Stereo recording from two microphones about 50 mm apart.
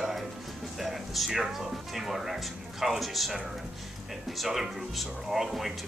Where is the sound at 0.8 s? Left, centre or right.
Centre.